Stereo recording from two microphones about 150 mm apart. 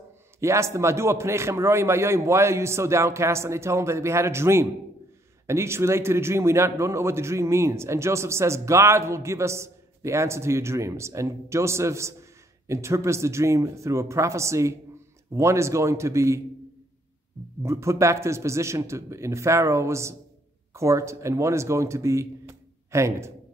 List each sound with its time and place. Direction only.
0.4 s a man's voice: 20° right (ahead or behind)
17.6 s a man's voice: 20° right (ahead or behind)